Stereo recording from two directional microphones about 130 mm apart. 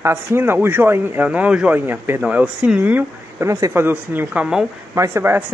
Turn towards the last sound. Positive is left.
turn(degrees=-20)  # may be behind; listen again after turning